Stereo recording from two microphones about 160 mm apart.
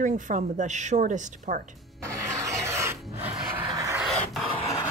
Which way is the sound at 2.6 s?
15° right (ahead or behind).